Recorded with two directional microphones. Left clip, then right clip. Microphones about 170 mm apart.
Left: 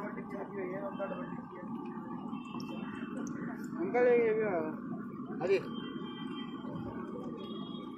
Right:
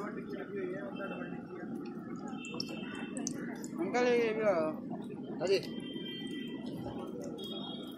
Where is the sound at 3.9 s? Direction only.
70° right (ahead or behind).